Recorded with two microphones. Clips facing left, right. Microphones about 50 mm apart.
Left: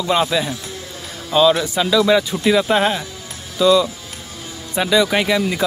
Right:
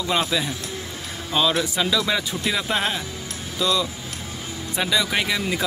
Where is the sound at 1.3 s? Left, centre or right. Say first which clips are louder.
Left 7 dB; centre.